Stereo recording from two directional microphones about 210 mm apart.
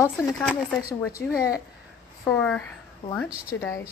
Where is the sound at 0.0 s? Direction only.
10° left (ahead or behind).